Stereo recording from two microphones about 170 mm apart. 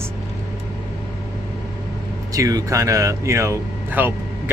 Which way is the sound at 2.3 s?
20° right (ahead or behind).